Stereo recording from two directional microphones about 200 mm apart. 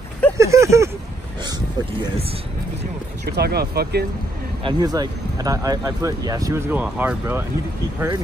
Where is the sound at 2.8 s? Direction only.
55° right (ahead or behind).